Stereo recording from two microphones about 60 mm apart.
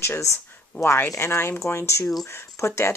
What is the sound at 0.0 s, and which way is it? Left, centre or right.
Speech, left.